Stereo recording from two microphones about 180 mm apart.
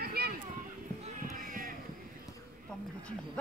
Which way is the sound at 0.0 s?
60° right (ahead or behind).